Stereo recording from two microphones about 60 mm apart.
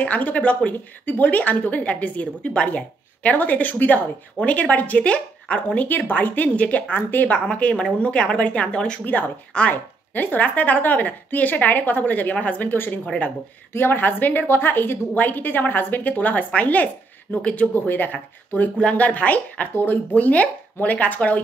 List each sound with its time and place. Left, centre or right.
0.0 s a woman's voice: left
7.0 s a woman's voice: left
10.1 s a woman's voice: left
12.6 s a woman's voice: left
17.7 s a woman's voice: left